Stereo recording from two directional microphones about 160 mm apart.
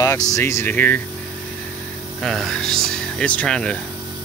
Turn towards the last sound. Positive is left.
turn(degrees=5)  # may be behind; listen again after turning